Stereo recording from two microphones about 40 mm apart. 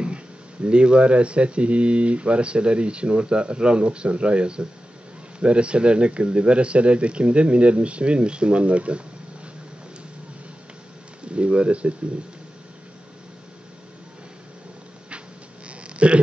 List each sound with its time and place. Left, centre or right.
0.7 s speech: right
11.3 s speech: right
15.9 s a sound: right